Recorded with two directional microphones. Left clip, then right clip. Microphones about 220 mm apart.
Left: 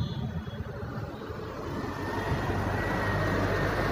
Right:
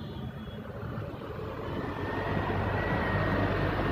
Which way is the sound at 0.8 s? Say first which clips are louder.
Even; 45° left (ahead or behind).